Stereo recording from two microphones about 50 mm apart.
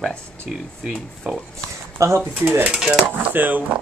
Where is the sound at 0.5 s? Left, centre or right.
Centre.